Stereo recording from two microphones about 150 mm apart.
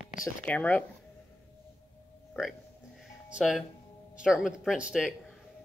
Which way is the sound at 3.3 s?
Centre (ahead or behind).